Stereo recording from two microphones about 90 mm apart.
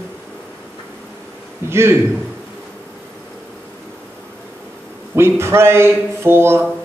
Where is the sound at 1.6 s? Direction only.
30° right (ahead or behind).